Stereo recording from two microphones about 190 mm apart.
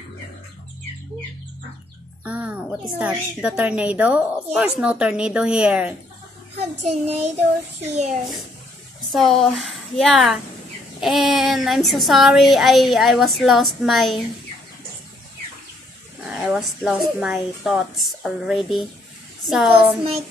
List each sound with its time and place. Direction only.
2.2 s a woman's voice: 5° right (ahead or behind)
6.6 s a child's voice: 35° right (ahead or behind)
9.1 s speech: centre (ahead or behind)
16.3 s a woman's voice: 5° right (ahead or behind)